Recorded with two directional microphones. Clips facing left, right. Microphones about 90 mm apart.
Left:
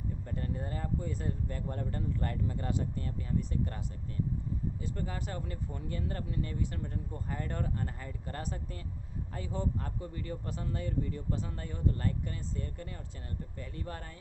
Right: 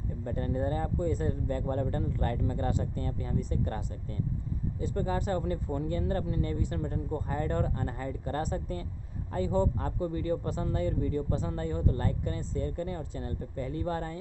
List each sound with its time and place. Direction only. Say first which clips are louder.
0.2 s speech: right 11 dB; 35° right (ahead or behind)
4.7 s speech: right 7 dB; 30° right (ahead or behind)